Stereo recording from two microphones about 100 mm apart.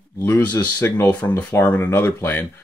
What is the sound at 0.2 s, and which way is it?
Speech, 20° left (ahead or behind).